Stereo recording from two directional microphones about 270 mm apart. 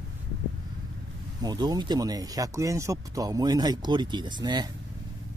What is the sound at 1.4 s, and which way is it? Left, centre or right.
Speech, centre.